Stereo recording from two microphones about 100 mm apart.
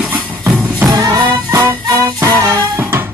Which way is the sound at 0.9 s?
40° right (ahead or behind).